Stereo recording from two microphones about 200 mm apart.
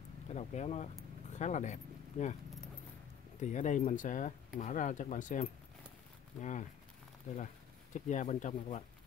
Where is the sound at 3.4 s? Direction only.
40° left (ahead or behind).